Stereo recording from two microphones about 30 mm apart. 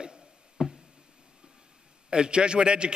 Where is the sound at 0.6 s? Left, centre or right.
Right.